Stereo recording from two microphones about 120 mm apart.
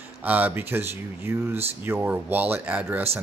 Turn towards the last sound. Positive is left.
turn(degrees=-15)  # may be behind; listen again after turning